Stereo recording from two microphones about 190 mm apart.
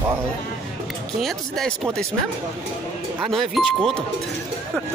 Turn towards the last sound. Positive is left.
turn(degrees=5)  # may be behind; listen again after turning